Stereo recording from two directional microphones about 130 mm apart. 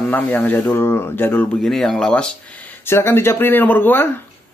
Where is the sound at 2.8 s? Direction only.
20° left (ahead or behind).